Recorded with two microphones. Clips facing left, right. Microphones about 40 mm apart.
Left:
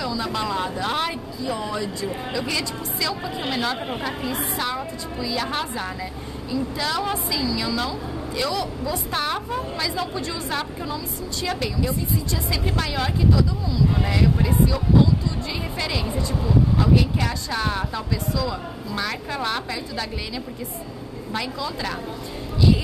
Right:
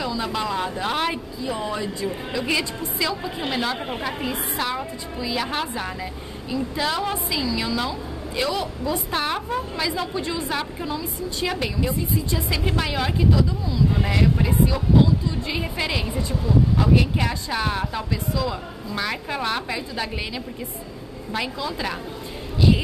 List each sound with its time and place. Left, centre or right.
0.0 s speech: centre
0.3 s a woman's voice: centre
1.4 s a woman's voice: centre
18.3 s a woman's voice: centre